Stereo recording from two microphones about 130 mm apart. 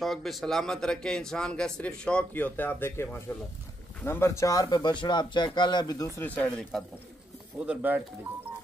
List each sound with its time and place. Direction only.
0.0 s speech: centre (ahead or behind); by 6.0 s 30° left (ahead or behind)
6.1 s speech: 15° left (ahead or behind)
7.6 s speech: 10° right (ahead or behind)